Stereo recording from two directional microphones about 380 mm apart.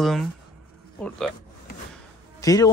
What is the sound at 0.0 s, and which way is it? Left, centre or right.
Speech, centre.